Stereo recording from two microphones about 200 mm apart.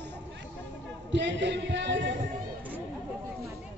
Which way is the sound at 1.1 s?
60° right (ahead or behind).